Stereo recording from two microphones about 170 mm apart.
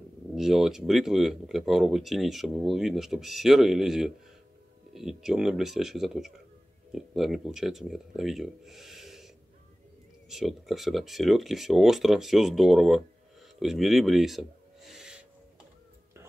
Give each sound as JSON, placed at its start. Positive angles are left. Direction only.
{"t": 0.4, "sound": "speech", "side_deg": 0}
{"t": 10.3, "sound": "speech", "side_deg": 0}
{"t": 14.9, "sound": "owl", "side_deg": -5}